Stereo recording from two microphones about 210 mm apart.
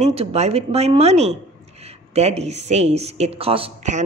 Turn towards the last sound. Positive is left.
turn(degrees=-30)  # may be behind; listen again after turning